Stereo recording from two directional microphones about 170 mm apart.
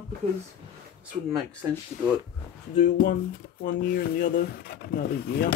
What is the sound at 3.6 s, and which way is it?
Speech, 60° left (ahead or behind).